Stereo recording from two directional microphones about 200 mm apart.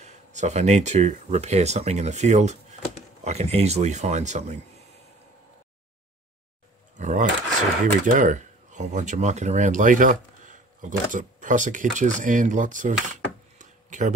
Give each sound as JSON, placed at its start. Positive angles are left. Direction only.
{"t": 0.0, "sound": "speech", "side_deg": -35}
{"t": 7.0, "sound": "speech", "side_deg": -35}